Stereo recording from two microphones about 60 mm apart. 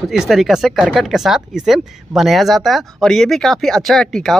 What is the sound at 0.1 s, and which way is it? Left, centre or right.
Speech, centre.